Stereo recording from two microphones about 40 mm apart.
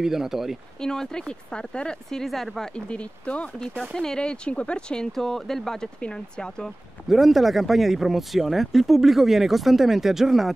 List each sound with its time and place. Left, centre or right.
0.0 s speech: centre
0.7 s speech: centre
2.0 s speech: centre
2.7 s speech: left
3.9 s speech: centre
5.1 s speech: centre
5.9 s speech: left
7.1 s speech: centre